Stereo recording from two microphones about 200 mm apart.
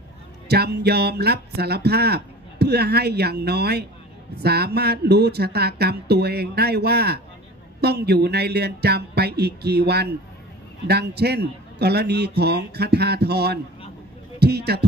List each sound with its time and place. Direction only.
0.5 s a man's voice: 55° right (ahead or behind)